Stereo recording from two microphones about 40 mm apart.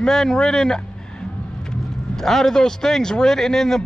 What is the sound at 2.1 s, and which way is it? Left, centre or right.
Speech, centre.